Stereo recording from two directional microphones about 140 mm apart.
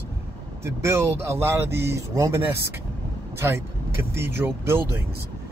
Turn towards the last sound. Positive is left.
turn(degrees=-15)  # may be behind; listen again after turning